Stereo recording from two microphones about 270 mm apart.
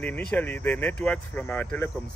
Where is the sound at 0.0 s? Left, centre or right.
Centre.